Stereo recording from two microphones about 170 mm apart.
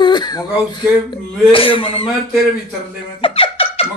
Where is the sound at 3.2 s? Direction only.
35° left (ahead or behind).